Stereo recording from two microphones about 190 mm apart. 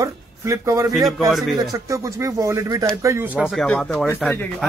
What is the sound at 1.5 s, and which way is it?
Speech, 15° right (ahead or behind).